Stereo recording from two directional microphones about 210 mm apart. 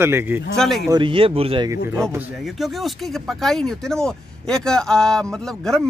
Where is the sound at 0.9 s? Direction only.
25° right (ahead or behind).